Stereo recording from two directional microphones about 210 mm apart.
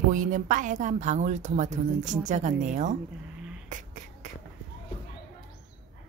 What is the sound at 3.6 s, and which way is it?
Beatboxing, 35° right (ahead or behind).